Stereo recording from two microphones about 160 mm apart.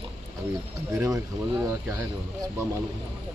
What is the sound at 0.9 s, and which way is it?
Speech, 20° right (ahead or behind).